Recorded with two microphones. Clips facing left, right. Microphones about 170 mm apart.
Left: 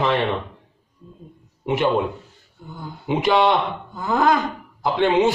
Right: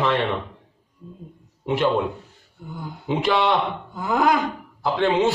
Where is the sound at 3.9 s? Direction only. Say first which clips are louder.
Left 1 dB; 10° right (ahead or behind).